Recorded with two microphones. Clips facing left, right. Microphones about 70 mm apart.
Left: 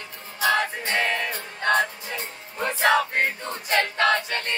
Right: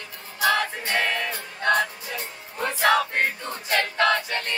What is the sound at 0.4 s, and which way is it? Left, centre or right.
Music, left.